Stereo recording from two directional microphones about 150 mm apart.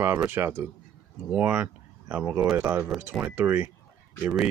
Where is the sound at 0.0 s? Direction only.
15° right (ahead or behind).